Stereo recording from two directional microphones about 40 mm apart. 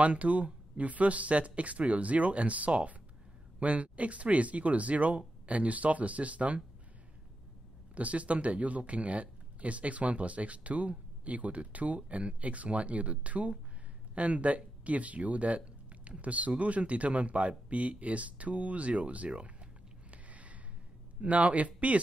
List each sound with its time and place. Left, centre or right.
0.0 s speech: right
7.9 s speech: right
20.1 s a sound: right
21.2 s speech: right